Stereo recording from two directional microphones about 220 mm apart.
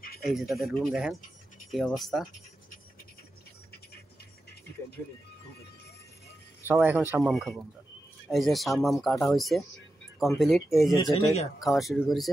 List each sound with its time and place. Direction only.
0.2 s speech: centre (ahead or behind)
6.6 s speech: 10° right (ahead or behind)
11.0 s speech: 25° left (ahead or behind)
11.6 s speech: centre (ahead or behind)